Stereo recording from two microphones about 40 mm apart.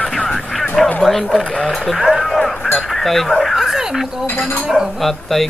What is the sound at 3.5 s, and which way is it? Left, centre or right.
Speech, centre.